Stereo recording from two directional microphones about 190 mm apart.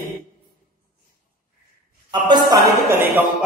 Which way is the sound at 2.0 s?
25° right (ahead or behind).